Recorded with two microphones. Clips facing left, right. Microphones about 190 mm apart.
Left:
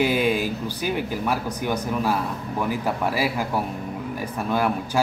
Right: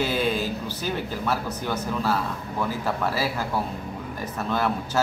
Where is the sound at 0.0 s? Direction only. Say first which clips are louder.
Left 3 dB; 15° left (ahead or behind).